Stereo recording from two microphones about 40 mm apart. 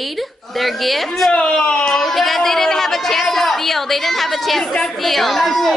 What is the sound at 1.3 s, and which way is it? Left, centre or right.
Speech, left.